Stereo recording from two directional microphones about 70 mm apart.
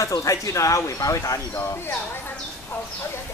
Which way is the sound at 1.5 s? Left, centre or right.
Left.